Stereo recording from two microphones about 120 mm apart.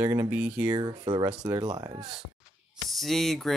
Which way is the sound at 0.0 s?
20° right (ahead or behind).